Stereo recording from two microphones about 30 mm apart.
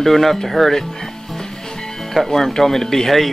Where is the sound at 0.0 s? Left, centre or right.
Centre.